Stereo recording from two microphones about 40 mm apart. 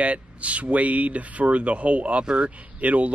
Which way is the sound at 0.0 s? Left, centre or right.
Right.